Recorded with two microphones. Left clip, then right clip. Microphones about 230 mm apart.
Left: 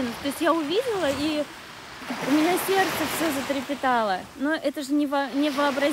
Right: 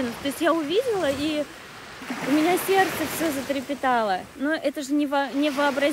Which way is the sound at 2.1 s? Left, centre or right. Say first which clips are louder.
Even; left.